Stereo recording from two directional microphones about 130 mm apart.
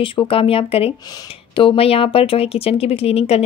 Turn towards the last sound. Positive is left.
turn(degrees=50)  # may be behind; listen again after turning